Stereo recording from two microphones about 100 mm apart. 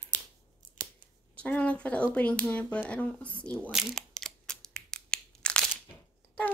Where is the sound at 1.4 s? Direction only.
15° left (ahead or behind).